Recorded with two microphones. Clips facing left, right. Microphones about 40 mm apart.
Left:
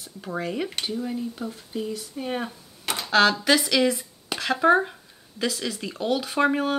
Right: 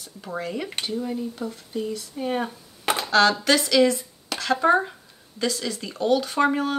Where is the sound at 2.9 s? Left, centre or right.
Right.